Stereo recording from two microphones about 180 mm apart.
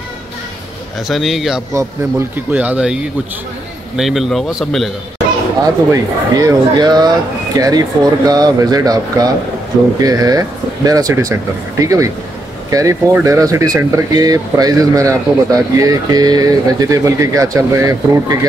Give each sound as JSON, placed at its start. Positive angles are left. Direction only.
{"t": 1.0, "sound": "a man's voice", "side_deg": 0}
{"t": 1.7, "sound": "a man's voice", "side_deg": -15}
{"t": 5.6, "sound": "speech", "side_deg": -20}